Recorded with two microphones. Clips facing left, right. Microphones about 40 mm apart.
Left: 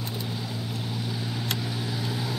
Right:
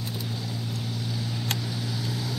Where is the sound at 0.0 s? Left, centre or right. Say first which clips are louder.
Left 1 dB; centre.